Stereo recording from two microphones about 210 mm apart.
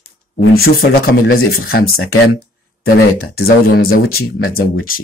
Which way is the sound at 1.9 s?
80° left.